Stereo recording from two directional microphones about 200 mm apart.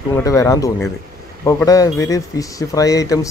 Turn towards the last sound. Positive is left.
turn(degrees=15)  # may be behind; listen again after turning